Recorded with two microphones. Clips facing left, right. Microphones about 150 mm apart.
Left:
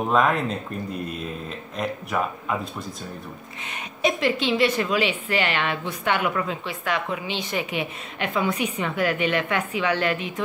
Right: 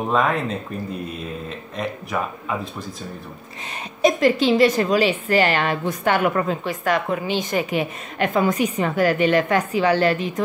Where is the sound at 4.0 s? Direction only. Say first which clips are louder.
Right 6 dB; 40° right (ahead or behind).